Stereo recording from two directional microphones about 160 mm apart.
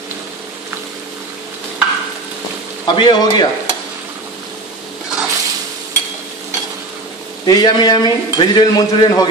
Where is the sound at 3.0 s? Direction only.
30° left (ahead or behind).